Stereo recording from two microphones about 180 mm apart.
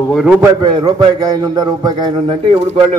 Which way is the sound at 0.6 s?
25° right (ahead or behind).